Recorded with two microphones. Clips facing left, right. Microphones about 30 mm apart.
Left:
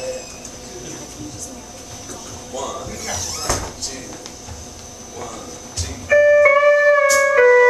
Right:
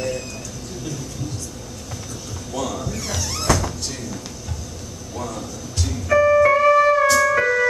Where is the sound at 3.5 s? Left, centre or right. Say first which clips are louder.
Right 2 dB; centre.